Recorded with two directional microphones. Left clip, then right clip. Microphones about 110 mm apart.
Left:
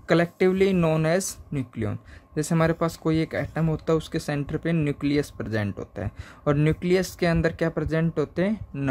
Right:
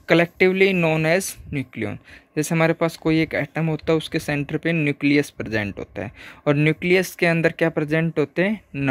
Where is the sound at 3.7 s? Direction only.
15° right (ahead or behind).